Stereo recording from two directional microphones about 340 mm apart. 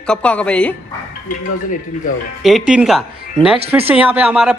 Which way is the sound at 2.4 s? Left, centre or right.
Centre.